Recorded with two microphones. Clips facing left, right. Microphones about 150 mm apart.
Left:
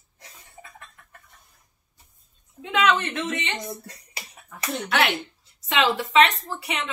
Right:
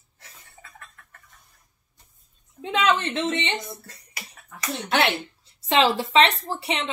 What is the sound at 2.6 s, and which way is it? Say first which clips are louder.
Speech: even; 30° right (ahead or behind).